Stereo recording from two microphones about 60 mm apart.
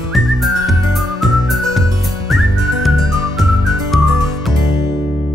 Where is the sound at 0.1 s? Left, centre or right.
Centre.